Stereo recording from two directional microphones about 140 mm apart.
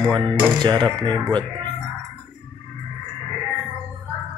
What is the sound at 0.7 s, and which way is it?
Speech, 30° right (ahead or behind).